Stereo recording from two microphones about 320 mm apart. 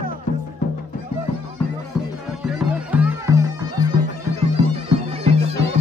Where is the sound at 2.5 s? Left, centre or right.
Centre.